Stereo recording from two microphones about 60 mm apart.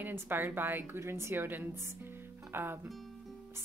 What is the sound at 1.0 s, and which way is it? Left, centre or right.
A woman's voice, right.